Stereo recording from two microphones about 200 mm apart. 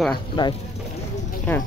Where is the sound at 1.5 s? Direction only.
10° left (ahead or behind).